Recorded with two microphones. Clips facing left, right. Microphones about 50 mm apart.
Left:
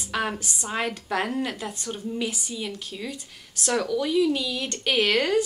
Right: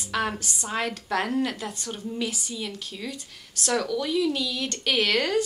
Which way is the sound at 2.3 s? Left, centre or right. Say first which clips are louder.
Left 1 dB; left.